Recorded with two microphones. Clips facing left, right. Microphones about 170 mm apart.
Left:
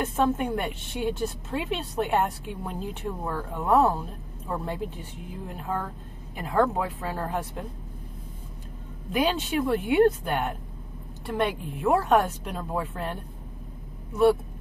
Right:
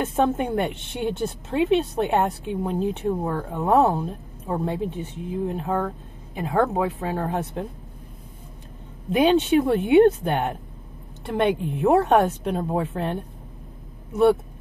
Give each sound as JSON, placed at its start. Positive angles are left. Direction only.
{"t": 0.1, "sound": "a woman's voice", "side_deg": -25}
{"t": 9.1, "sound": "a woman's voice", "side_deg": -25}